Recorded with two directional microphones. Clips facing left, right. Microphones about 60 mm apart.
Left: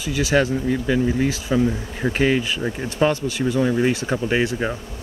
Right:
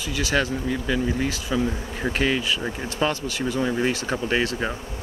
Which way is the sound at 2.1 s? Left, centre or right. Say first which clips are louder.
Left 4 dB; centre.